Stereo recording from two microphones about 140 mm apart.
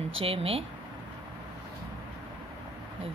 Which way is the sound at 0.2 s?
45° right (ahead or behind).